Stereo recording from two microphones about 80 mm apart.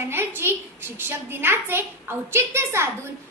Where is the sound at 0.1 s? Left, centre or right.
Right.